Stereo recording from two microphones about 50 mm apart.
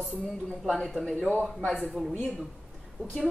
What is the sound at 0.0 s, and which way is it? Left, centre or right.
Speech, centre.